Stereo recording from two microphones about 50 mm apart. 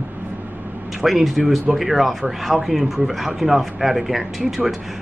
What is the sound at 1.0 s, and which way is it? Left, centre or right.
Speech, centre.